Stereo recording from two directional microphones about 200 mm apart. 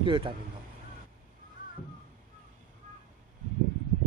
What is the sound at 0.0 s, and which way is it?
Speech, 25° right (ahead or behind).